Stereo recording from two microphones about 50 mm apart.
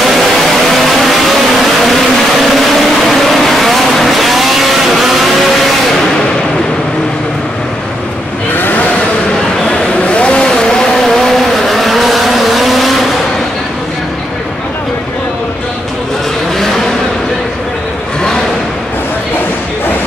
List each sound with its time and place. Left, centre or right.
0.1 s vehicle: centre
2.4 s vehicle: centre
8.5 s vehicle: left
9.7 s vehicle: centre
11.1 s vehicle: centre